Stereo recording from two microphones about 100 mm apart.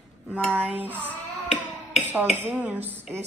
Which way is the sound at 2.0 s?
20° right (ahead or behind).